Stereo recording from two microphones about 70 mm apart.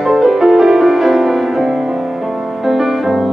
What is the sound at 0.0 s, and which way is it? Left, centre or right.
Music, centre.